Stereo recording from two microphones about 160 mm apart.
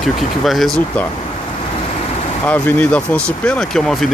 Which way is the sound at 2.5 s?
10° left (ahead or behind).